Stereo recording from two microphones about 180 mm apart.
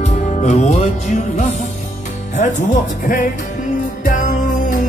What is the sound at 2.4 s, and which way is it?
Speech, 45° left (ahead or behind).